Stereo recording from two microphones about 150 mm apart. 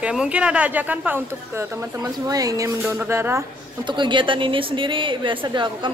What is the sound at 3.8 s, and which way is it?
A woman's voice, 30° right (ahead or behind).